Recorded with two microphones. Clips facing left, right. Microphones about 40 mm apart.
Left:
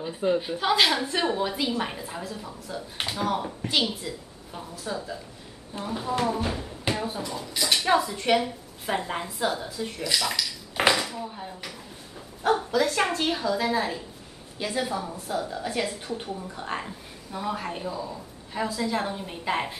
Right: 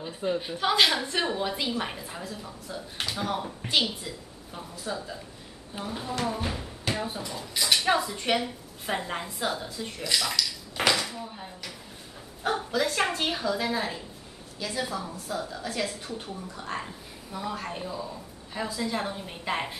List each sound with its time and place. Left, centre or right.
0.0 s speech: centre
10.3 s dishes: left
11.1 s speech: centre
14.6 s speech: centre
16.8 s speech: centre